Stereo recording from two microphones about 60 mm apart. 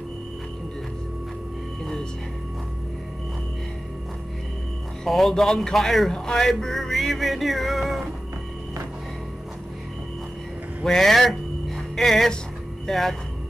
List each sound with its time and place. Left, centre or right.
5.0 s speech: centre
10.8 s music: centre
12.8 s speech: centre